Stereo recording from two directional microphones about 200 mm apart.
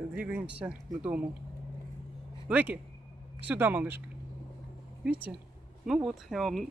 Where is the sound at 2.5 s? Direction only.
10° right (ahead or behind).